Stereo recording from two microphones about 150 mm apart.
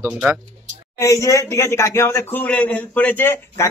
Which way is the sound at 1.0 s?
20° left (ahead or behind).